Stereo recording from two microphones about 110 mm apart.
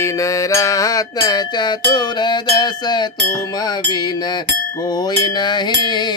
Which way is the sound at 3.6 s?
40° left (ahead or behind).